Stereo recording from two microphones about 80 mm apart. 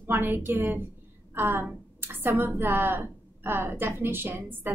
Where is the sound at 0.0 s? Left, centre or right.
Right.